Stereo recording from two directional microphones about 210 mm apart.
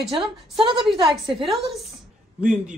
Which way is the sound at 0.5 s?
25° right (ahead or behind).